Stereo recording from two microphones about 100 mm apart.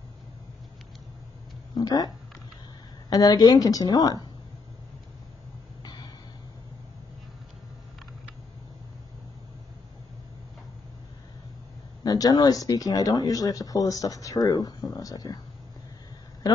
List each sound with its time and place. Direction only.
1.8 s speech: 40° left (ahead or behind)
3.1 s speech: 40° left (ahead or behind)
5.8 s a sound: 45° left (ahead or behind)
12.0 s speech: 40° left (ahead or behind)